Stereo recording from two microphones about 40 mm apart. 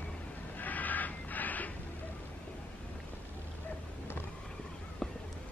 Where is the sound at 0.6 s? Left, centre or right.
Left.